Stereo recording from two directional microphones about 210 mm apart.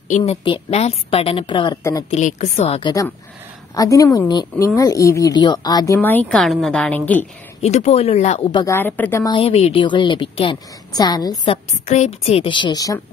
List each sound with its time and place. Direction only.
0.1 s a woman's voice: 30° left (ahead or behind)
2.0 s a woman's voice: 35° left (ahead or behind)
3.7 s a woman's voice: 15° left (ahead or behind)
5.9 s a woman's voice: 10° left (ahead or behind)
7.6 s a woman's voice: 30° left (ahead or behind)
8.7 s a woman's voice: 10° left (ahead or behind)
9.3 s a woman's voice: 25° left (ahead or behind)